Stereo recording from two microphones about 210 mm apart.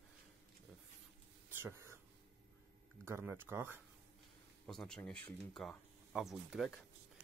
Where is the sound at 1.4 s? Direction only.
10° right (ahead or behind).